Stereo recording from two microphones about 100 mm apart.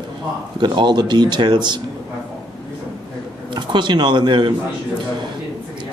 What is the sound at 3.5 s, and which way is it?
Speech, 50° right (ahead or behind).